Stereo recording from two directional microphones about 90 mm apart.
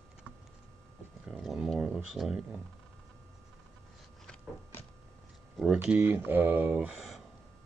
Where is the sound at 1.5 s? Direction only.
5° right (ahead or behind).